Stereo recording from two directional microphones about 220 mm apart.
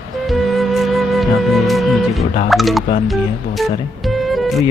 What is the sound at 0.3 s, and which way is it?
Music, centre (ahead or behind).